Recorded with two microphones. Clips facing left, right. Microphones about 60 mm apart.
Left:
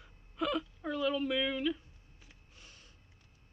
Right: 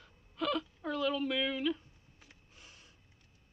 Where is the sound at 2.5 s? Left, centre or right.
Centre.